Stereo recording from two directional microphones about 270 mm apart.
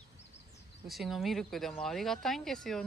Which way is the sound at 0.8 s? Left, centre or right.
Centre.